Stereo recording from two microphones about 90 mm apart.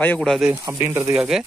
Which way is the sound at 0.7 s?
25° right (ahead or behind).